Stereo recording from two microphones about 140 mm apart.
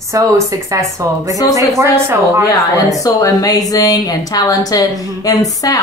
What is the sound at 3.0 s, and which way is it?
A woman's voice, 25° left (ahead or behind).